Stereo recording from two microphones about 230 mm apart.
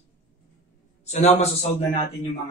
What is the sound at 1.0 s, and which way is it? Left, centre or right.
Speech, left.